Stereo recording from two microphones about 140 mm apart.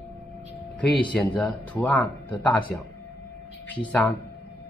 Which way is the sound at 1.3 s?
10° left (ahead or behind).